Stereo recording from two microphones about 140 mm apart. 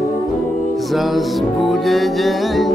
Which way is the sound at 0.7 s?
Centre (ahead or behind).